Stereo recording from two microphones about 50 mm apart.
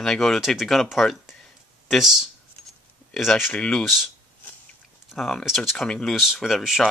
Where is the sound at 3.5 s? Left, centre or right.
Left.